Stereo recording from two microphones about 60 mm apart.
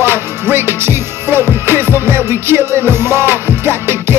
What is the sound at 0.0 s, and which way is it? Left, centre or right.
Music, right.